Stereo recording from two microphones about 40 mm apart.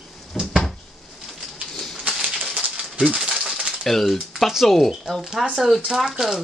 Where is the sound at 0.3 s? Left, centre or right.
Left.